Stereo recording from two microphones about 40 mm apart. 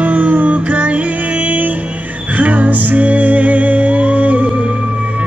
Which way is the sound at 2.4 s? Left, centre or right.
Right.